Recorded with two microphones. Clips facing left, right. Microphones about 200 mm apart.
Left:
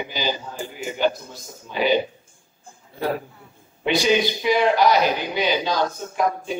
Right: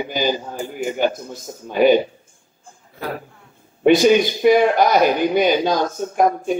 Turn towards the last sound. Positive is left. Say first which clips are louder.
# right 6 dB
turn(degrees=-50)  # may be behind; listen again after turning